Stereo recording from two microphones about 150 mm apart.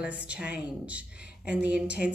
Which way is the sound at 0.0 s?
10° right (ahead or behind).